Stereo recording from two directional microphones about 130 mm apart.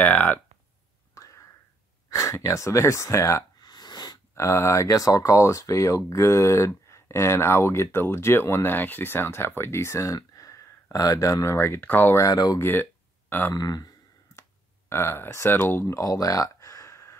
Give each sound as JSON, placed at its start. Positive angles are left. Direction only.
{"t": 0.0, "sound": "speech", "side_deg": 10}
{"t": 1.1, "sound": "a sound", "side_deg": 25}
{"t": 2.0, "sound": "speech", "side_deg": 25}
{"t": 12.5, "sound": "speech", "side_deg": 15}
{"t": 13.6, "sound": "a sound", "side_deg": 30}
{"t": 14.9, "sound": "speech", "side_deg": 20}